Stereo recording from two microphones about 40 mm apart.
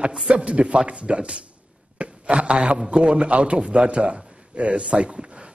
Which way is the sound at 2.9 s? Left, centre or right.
Right.